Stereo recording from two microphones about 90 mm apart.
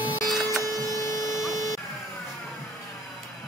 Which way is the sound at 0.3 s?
Centre (ahead or behind).